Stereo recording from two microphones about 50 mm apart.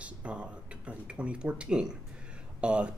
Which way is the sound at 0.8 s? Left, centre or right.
Right.